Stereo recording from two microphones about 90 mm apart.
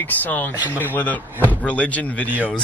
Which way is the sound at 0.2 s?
20° left (ahead or behind).